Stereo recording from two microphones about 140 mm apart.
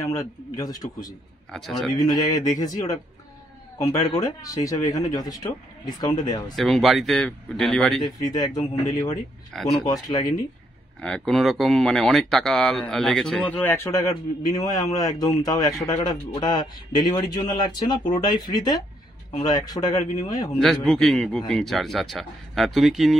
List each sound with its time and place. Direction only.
0.0 s a man's voice: 20° left (ahead or behind)
1.5 s speech: centre (ahead or behind)
2.0 s a man's voice: 30° left (ahead or behind)
4.1 s a man's voice: 25° left (ahead or behind)
6.5 s speech: centre (ahead or behind)
8.3 s a man's voice: 25° left (ahead or behind)
11.0 s a man's voice: 5° left (ahead or behind); by 20.4 s 25° left (ahead or behind)
20.5 s speech: 5° left (ahead or behind)